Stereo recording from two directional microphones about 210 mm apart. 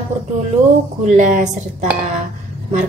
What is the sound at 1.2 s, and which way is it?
Speech, 40° right (ahead or behind).